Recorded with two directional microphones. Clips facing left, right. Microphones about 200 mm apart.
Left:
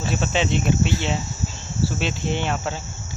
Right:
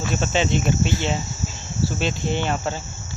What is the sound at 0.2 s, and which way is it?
Speech, centre (ahead or behind).